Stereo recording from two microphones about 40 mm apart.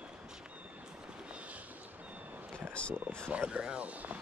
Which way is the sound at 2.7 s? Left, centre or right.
Left.